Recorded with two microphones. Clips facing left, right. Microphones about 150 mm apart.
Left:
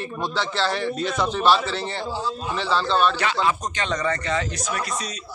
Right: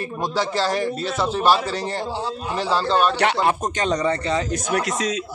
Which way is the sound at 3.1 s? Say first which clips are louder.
Right 3 dB; 60° right (ahead or behind).